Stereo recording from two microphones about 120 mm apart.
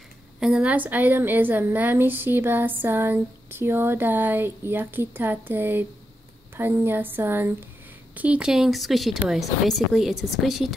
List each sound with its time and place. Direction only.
0.4 s a woman's voice: 5° right (ahead or behind)